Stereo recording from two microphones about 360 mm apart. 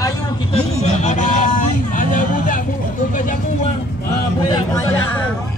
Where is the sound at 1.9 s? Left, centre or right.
Left.